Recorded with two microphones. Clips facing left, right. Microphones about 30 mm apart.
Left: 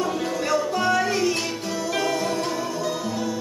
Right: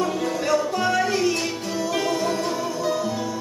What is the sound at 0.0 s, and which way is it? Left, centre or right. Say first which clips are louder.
Music: right 1 dB; centre.